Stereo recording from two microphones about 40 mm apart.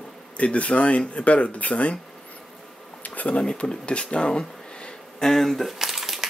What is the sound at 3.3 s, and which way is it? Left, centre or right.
Speech, left.